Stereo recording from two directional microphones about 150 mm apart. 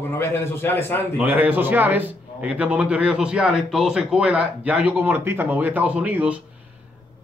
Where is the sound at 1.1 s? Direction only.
10° right (ahead or behind).